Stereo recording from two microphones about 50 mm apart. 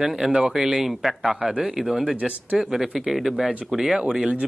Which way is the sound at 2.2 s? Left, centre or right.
Right.